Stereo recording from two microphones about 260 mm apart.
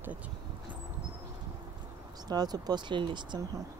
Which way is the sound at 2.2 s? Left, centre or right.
Centre.